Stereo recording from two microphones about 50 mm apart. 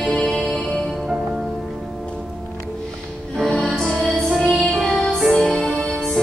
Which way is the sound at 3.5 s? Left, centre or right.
Centre.